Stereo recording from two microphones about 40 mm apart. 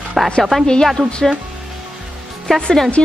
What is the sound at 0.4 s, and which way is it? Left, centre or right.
Speech, centre.